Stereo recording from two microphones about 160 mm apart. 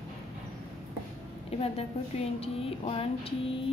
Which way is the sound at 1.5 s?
40° left (ahead or behind).